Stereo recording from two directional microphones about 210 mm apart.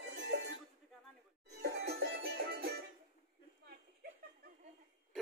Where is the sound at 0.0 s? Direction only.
60° right (ahead or behind).